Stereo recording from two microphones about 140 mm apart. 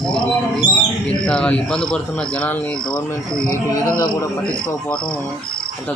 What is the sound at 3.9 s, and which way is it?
Speech, 30° left (ahead or behind).